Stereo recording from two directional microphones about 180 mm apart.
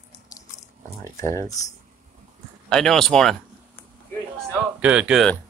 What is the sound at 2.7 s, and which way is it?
Speech, 5° left (ahead or behind).